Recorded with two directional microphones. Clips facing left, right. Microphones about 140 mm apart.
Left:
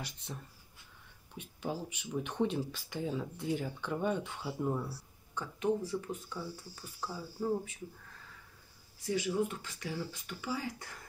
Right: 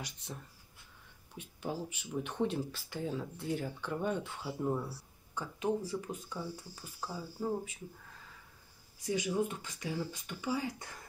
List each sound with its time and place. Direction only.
1.3 s speech: 5° right (ahead or behind)
3.0 s speech: 5° left (ahead or behind); by 6.8 s 15° right (ahead or behind)
7.0 s speech: centre (ahead or behind)
9.1 s speech: 15° right (ahead or behind)